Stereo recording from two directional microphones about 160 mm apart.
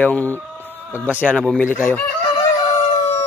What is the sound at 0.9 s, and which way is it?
Speech, 10° right (ahead or behind).